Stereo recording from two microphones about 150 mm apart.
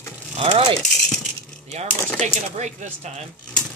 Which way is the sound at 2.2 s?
50° right (ahead or behind).